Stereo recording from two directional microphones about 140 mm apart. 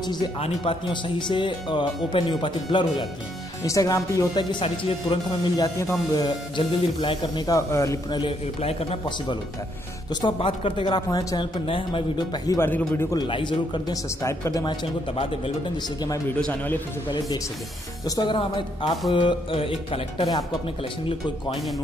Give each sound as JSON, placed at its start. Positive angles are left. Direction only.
{"t": 0.0, "sound": "speech", "side_deg": 30}
{"t": 3.6, "sound": "speech", "side_deg": 25}
{"t": 5.6, "sound": "speech", "side_deg": 25}
{"t": 8.2, "sound": "speech", "side_deg": 45}
{"t": 10.2, "sound": "speech", "side_deg": 35}
{"t": 12.5, "sound": "speech", "side_deg": 15}
{"t": 13.1, "sound": "speech", "side_deg": 30}
{"t": 14.2, "sound": "speech", "side_deg": 25}
{"t": 16.3, "sound": "speech", "side_deg": 10}
{"t": 18.0, "sound": "speech", "side_deg": 30}